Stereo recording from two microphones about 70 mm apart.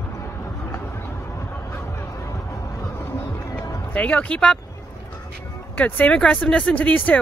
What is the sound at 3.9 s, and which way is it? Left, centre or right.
Speech, centre.